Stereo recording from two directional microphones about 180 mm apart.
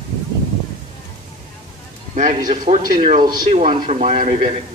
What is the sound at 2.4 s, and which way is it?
A man's voice, 45° right (ahead or behind).